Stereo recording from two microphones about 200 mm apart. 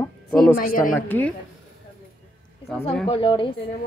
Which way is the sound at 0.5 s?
45° left (ahead or behind).